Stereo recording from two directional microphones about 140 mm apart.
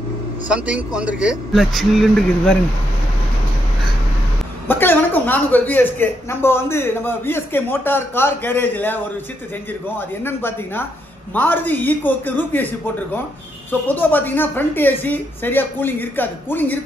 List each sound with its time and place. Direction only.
0.5 s a man's voice: 10° right (ahead or behind)
4.6 s speech: 15° left (ahead or behind)